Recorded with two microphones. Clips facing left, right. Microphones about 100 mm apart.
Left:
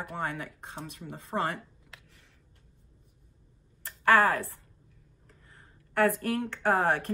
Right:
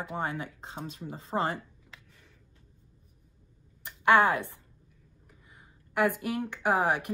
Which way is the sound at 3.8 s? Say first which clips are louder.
Right 1 dB; 20° right (ahead or behind).